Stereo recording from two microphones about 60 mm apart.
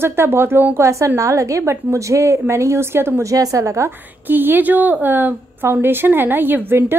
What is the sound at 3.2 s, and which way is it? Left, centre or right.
Speech, right.